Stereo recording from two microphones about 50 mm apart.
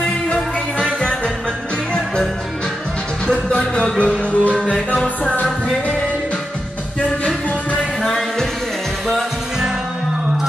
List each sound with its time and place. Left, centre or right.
0.3 s music: centre
3.3 s music: centre
8.0 s music: centre